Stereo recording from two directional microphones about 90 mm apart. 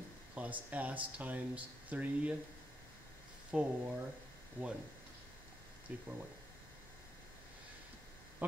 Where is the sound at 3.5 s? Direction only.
10° right (ahead or behind).